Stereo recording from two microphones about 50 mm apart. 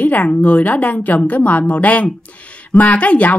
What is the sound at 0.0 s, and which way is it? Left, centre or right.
A woman's voice, left.